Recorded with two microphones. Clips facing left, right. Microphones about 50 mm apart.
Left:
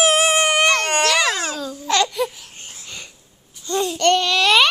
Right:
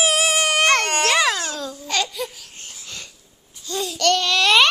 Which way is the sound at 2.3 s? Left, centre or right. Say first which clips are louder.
Left 1 dB; centre.